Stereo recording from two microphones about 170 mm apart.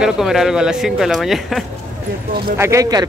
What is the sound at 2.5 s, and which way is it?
Speech, 15° right (ahead or behind).